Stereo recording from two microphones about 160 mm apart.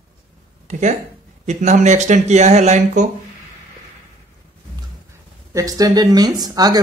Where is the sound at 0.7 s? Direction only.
50° right (ahead or behind).